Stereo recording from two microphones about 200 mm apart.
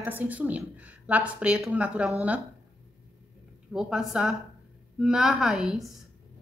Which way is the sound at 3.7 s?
5° right (ahead or behind).